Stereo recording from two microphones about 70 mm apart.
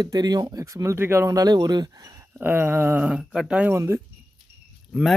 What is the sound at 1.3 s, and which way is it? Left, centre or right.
Speech, right.